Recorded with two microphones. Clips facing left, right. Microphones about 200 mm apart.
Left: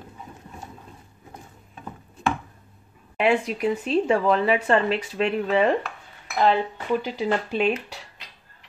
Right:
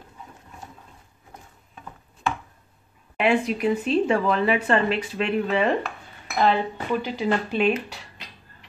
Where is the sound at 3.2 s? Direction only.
35° left (ahead or behind).